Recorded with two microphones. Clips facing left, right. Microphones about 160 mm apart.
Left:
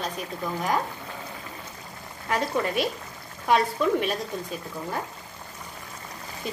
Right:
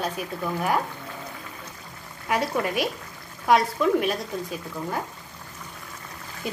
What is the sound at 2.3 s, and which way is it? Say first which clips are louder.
A woman's voice: right 1 dB; 5° right (ahead or behind).